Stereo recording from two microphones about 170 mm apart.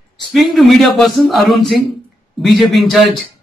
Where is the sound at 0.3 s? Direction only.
Centre (ahead or behind).